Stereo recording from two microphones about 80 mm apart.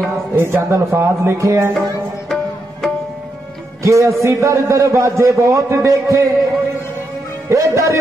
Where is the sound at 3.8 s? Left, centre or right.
Right.